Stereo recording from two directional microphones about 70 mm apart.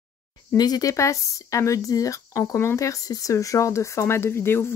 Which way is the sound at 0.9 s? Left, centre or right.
Left.